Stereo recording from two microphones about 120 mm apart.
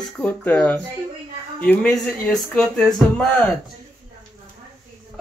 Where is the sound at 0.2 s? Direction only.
10° left (ahead or behind).